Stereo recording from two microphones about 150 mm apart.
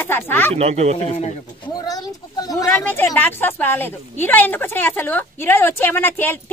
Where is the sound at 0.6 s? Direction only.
45° right (ahead or behind).